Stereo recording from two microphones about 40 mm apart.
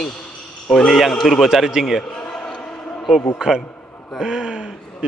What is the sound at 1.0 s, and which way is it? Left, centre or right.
Mantra, centre.